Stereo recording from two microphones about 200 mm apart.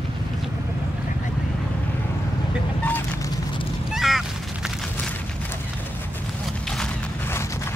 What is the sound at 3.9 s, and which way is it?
Goose, centre (ahead or behind).